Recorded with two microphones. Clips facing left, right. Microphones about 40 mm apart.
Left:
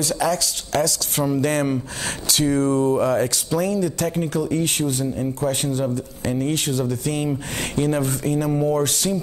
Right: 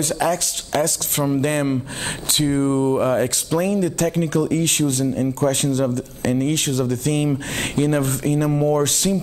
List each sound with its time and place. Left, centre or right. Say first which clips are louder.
0.0 s speech: right 1 dB; right
2.4 s speech: even; right
6.2 s speech: right 3 dB; right